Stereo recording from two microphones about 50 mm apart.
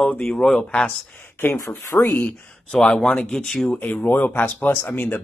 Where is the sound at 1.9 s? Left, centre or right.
Left.